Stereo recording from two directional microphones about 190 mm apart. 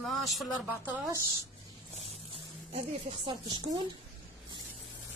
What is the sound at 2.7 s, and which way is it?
Speech, 30° right (ahead or behind).